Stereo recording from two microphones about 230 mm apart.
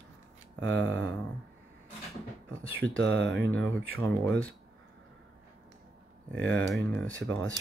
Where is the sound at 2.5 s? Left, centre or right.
Right.